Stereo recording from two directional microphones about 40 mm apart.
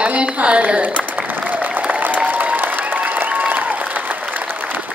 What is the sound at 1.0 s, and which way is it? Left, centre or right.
Applause, right.